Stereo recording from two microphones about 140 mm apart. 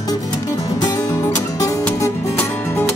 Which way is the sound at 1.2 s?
20° left (ahead or behind).